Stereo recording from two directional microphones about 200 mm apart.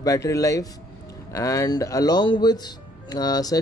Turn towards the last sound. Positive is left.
turn(degrees=20)  # may be behind; listen again after turning